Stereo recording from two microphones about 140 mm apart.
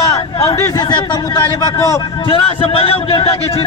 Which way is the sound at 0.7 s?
30° left (ahead or behind).